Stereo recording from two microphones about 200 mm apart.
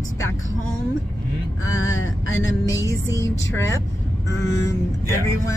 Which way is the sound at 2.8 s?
15° left (ahead or behind).